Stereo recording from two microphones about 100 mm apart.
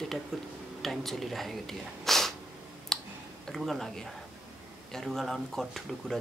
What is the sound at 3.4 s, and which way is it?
Speech, centre (ahead or behind).